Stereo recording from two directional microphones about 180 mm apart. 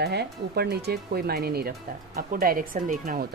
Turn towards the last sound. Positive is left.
turn(degrees=-50)  # may be behind; listen again after turning